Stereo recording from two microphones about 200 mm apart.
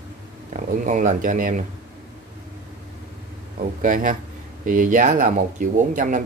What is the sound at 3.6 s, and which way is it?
Speech, 40° right (ahead or behind).